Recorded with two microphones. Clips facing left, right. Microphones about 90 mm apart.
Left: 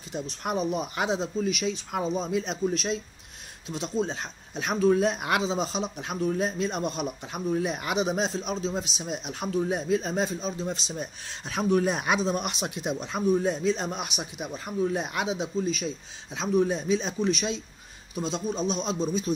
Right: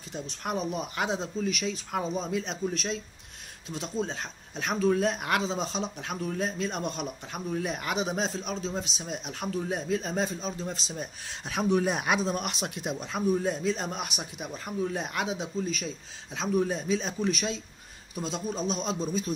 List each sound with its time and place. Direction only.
0.1 s a man's voice: 10° left (ahead or behind)